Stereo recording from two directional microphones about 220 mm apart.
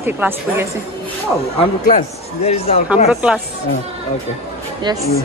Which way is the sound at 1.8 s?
30° left (ahead or behind).